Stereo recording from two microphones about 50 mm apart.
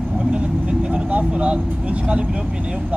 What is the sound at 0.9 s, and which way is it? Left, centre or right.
Speech, right.